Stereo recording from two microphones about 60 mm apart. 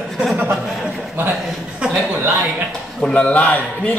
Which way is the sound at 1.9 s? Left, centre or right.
Centre.